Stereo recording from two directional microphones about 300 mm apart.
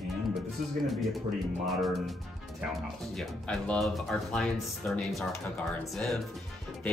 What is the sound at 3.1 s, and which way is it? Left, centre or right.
Speech, centre.